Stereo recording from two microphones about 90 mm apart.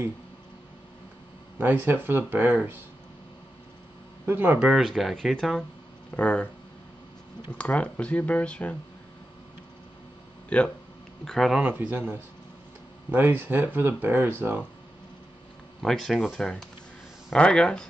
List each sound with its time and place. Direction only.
1.6 s speech: 20° right (ahead or behind)
4.3 s speech: 25° right (ahead or behind)
4.6 s speech: 10° right (ahead or behind)
4.8 s speech: 5° left (ahead or behind)
7.5 s speech: 15° left (ahead or behind)
10.5 s speech: 15° left (ahead or behind)
11.2 s speech: 5° left (ahead or behind)
11.6 s speech: 20° right (ahead or behind)
15.8 s speech: 5° left (ahead or behind)